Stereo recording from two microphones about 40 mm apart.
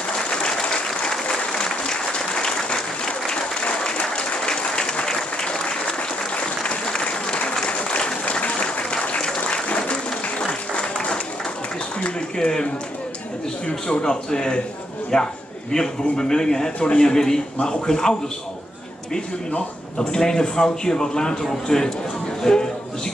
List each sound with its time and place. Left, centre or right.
0.3 s applause: centre
9.2 s applause: centre
9.8 s applause: left
12.0 s a sound: left
13.7 s a man's voice: left
20.0 s a man's voice: centre